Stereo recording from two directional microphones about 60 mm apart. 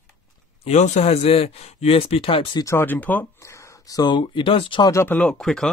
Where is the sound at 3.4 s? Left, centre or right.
Left.